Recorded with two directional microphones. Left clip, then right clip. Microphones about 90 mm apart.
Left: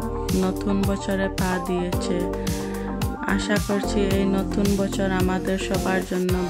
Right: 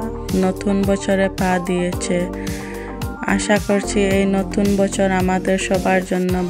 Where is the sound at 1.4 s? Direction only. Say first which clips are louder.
Right 6 dB; 40° right (ahead or behind).